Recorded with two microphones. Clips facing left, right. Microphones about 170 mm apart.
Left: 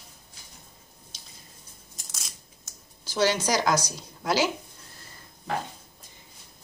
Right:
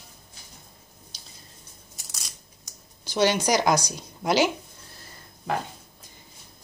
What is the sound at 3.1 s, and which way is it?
A woman's voice, 15° right (ahead or behind).